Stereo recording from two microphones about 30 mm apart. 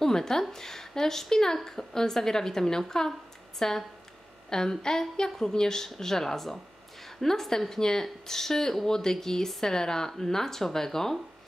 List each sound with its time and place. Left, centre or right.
0.0 s a woman's voice: centre